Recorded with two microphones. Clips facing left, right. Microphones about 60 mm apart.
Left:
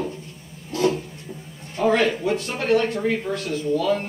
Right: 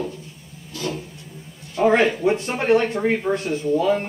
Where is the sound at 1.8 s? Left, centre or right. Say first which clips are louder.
Right 3 dB; right.